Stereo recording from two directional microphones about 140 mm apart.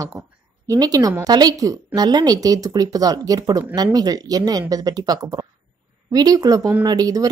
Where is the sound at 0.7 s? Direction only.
25° right (ahead or behind).